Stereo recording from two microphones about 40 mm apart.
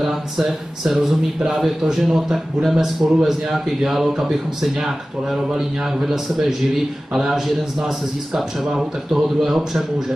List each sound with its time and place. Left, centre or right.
0.0 s a man's voice: centre